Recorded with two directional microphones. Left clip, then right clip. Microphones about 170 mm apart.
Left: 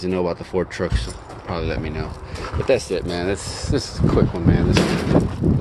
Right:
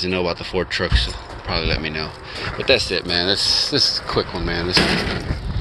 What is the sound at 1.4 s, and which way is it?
Speech, 15° left (ahead or behind).